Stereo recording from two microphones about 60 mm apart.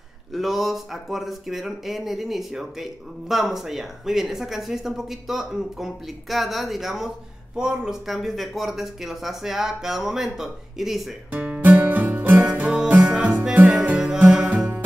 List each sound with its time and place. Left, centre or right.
0.3 s speech: centre
11.3 s guitar: right
11.6 s music: right
12.4 s music: centre